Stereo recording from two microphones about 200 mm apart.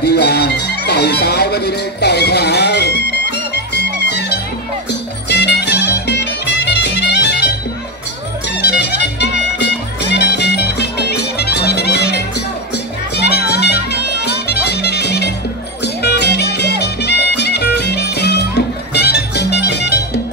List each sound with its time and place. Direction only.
0.0 s music: 55° left (ahead or behind)
5.3 s music: 55° left (ahead or behind)
8.5 s music: 55° left (ahead or behind)